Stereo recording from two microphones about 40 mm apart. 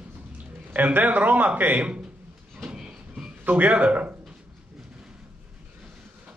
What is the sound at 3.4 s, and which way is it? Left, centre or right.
Speech, right.